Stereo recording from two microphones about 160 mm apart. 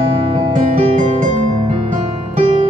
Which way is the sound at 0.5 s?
50° right (ahead or behind).